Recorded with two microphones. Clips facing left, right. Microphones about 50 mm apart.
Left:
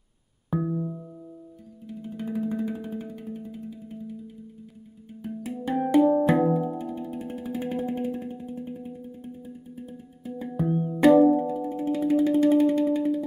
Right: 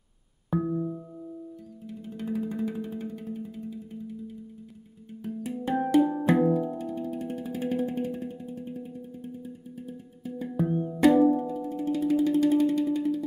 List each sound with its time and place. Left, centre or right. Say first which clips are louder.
0.5 s music: even; centre
5.9 s music: left 3 dB; centre
10.5 s music: left 2 dB; centre
11.2 s music: left 3 dB; centre